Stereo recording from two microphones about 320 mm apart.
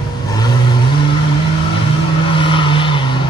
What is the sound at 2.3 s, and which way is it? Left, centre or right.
Vehicle, centre.